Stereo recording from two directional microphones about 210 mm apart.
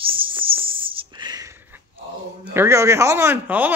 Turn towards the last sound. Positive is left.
turn(degrees=-10)  # may be behind; listen again after turning